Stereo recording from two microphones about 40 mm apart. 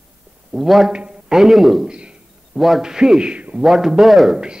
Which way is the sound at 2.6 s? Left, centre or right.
Centre.